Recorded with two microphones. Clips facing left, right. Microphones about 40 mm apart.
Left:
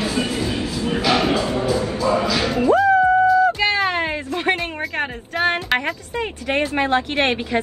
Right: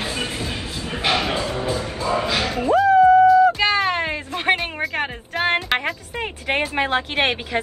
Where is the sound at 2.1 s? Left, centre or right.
Right.